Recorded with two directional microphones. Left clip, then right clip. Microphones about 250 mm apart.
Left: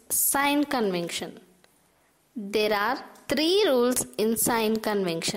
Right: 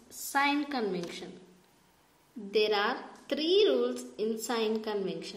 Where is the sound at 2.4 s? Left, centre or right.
Left.